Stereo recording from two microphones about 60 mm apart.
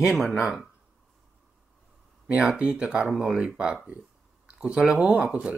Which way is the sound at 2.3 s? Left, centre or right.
Centre.